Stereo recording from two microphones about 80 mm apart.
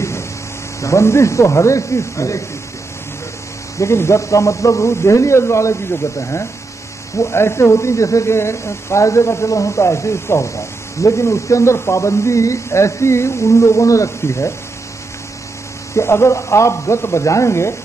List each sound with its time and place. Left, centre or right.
0.7 s speech: left
3.7 s speech: left
15.9 s speech: left